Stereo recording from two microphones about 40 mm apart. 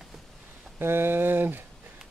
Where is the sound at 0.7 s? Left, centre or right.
Right.